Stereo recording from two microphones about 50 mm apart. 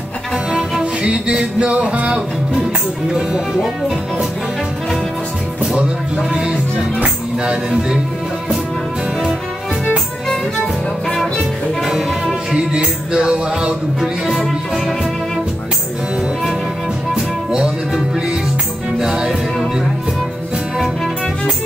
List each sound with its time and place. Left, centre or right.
0.6 s music: centre
3.1 s music: centre
11.8 s music: centre
12.5 s music: centre
17.1 s music: centre
18.9 s music: centre